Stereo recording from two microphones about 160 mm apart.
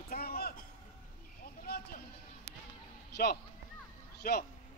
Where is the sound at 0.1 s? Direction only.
75° left (ahead or behind).